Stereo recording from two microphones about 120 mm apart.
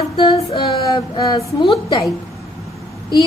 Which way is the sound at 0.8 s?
30° left (ahead or behind).